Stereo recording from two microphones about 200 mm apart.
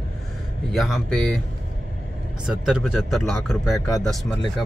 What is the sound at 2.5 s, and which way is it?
Speech, 5° right (ahead or behind).